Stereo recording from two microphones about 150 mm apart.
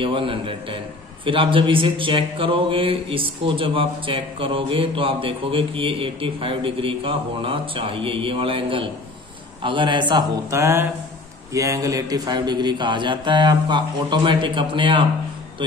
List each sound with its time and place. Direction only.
0.0 s speech: 35° right (ahead or behind)
10.5 s mantra: 20° right (ahead or behind)
11.5 s speech: 20° right (ahead or behind)